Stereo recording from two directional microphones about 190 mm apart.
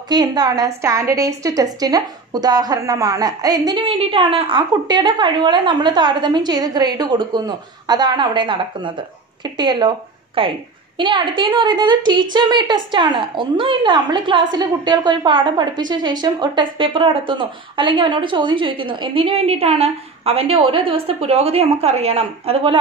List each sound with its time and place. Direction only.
0.1 s a woman's voice: 20° right (ahead or behind)